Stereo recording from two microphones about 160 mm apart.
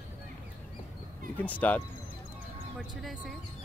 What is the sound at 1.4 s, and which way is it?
Speech, 10° left (ahead or behind).